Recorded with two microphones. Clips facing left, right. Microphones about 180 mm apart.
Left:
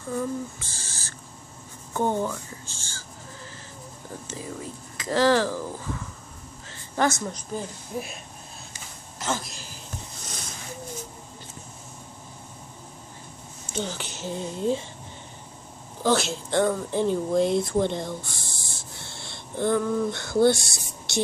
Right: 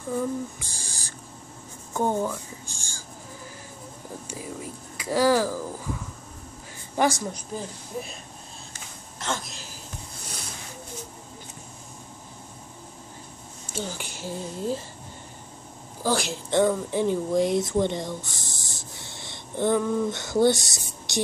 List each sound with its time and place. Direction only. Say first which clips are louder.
0.1 s speech: right 1 dB; 15° right (ahead or behind)
4.3 s speech: left 1 dB; 10° right (ahead or behind)
6.7 s a sound: right 1 dB; 10° right (ahead or behind)
7.9 s speech: left 2 dB; 5° left (ahead or behind)
9.2 s a woman's voice: left 2 dB; 5° left (ahead or behind)
13.7 s speech: left 2 dB; 10° right (ahead or behind)
16.0 s speech: left 3 dB; 10° right (ahead or behind)